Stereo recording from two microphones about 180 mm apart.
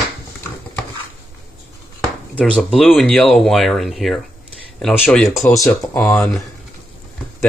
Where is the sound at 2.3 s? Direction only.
5° left (ahead or behind).